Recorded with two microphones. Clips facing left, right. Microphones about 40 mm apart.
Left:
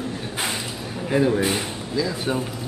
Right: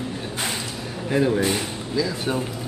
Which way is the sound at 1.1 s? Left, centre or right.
Centre.